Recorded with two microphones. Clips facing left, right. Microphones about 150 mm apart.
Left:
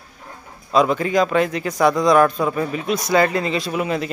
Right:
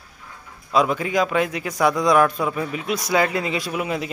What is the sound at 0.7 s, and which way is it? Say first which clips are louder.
A man's voice: left 3 dB; 5° right (ahead or behind).